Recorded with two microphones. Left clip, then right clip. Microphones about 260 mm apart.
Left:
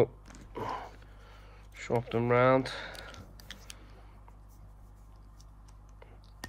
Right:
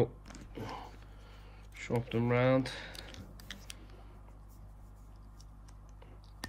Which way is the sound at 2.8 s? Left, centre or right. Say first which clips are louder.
Left 4 dB; centre.